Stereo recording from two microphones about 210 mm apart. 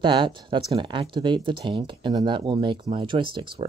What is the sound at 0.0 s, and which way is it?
Speech, 25° right (ahead or behind).